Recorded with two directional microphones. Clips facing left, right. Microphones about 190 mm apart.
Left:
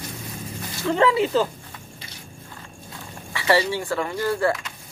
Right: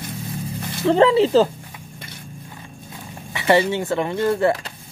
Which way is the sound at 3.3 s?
20° right (ahead or behind).